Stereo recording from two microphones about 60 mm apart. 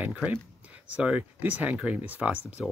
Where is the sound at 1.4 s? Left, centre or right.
Right.